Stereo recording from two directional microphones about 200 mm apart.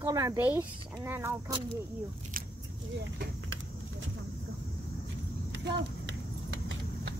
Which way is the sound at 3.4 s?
75° right (ahead or behind).